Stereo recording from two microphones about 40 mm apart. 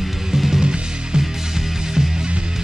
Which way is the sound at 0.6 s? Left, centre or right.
Right.